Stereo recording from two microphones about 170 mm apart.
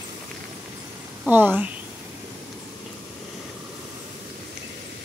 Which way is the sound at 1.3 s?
10° right (ahead or behind).